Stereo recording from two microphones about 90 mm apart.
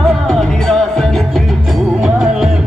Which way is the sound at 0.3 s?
5° left (ahead or behind).